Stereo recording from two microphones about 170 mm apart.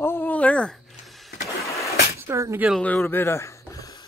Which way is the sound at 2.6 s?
5° left (ahead or behind).